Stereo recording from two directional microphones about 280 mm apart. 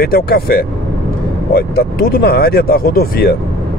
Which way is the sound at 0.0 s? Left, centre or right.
Left.